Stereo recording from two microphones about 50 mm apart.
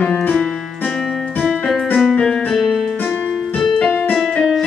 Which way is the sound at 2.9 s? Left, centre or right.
Left.